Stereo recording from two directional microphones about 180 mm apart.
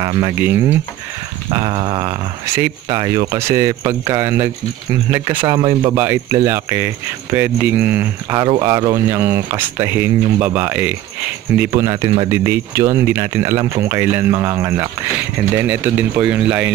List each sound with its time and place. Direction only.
0.0 s speech: 20° right (ahead or behind)
0.4 s speech: 10° right (ahead or behind)
1.5 s speech: 20° right (ahead or behind)
8.4 s speech: 25° right (ahead or behind); by 16.7 s 5° right (ahead or behind)